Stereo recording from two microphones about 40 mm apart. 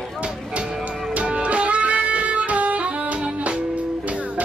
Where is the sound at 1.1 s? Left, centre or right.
Right.